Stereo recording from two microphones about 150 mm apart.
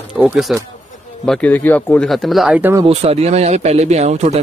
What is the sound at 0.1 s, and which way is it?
A man's voice, 5° right (ahead or behind).